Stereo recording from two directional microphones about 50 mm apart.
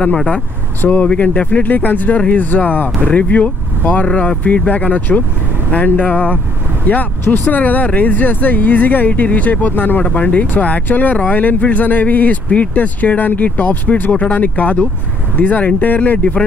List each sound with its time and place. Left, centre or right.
0.8 s speech: left